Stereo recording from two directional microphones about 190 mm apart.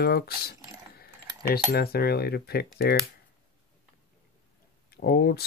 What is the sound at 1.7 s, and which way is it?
Speech, 55° left (ahead or behind).